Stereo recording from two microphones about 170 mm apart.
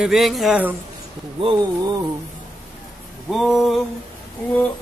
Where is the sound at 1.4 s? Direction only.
30° right (ahead or behind).